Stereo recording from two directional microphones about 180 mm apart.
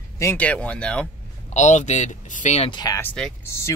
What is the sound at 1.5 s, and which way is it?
Speech, 40° left (ahead or behind).